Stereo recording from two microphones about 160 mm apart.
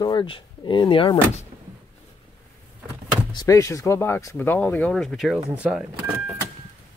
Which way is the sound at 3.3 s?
20° left (ahead or behind).